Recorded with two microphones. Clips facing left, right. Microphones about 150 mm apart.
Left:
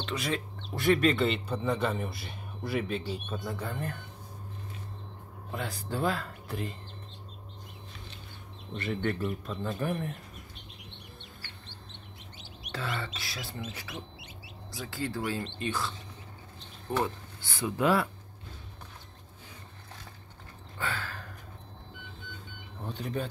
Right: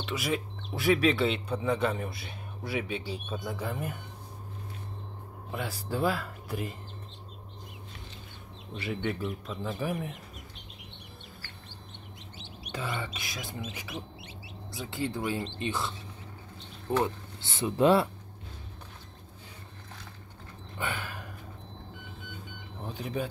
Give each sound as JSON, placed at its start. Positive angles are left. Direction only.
{"t": 0.0, "sound": "a man's voice", "side_deg": -5}
{"t": 5.5, "sound": "speech", "side_deg": -10}
{"t": 8.7, "sound": "a man's voice", "side_deg": -5}
{"t": 12.7, "sound": "speech", "side_deg": -15}
{"t": 13.6, "sound": "a man's voice", "side_deg": -5}
{"t": 14.8, "sound": "speech", "side_deg": -20}
{"t": 17.0, "sound": "speech", "side_deg": -25}
{"t": 20.7, "sound": "a sound", "side_deg": -20}
{"t": 22.8, "sound": "speech", "side_deg": -10}